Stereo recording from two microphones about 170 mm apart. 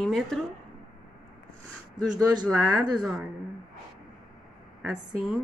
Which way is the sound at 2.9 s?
Centre (ahead or behind).